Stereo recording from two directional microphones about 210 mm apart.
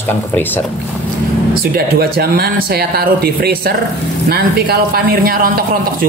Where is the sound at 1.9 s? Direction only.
45° right (ahead or behind).